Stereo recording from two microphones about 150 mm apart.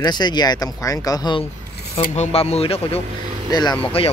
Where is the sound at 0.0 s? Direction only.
30° left (ahead or behind).